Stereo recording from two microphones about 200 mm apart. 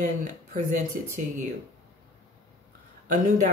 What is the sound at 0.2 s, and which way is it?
Speech, 40° right (ahead or behind).